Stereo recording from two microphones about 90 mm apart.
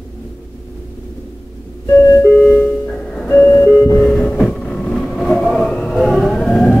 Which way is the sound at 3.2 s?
20° left (ahead or behind).